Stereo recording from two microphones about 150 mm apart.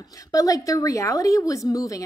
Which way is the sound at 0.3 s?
20° left (ahead or behind).